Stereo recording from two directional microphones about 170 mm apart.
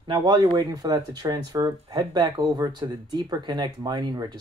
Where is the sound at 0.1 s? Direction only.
25° right (ahead or behind).